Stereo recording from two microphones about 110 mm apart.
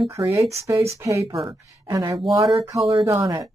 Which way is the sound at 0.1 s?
30° right (ahead or behind).